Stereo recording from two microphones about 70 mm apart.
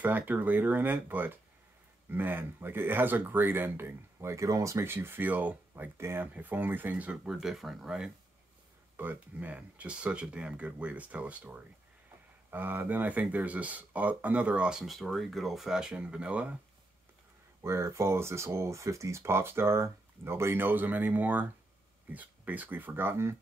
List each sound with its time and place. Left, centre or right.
0.0 s speech: right
4.8 s speech: right
5.9 s speech: right
7.2 s speech: centre
8.9 s speech: right
17.6 s speech: right